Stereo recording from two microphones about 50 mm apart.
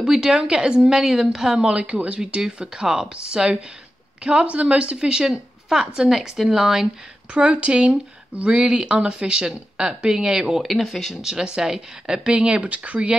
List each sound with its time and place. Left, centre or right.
0.0 s a woman's voice: centre
7.3 s a woman's voice: right
10.6 s speech: centre
11.1 s a woman's voice: centre
12.3 s speech: right